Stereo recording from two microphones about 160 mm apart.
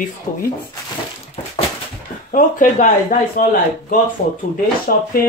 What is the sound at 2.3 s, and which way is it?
Speech, 55° left (ahead or behind).